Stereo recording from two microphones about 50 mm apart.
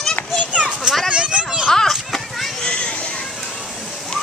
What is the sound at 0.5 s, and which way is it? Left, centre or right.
Children playing, right.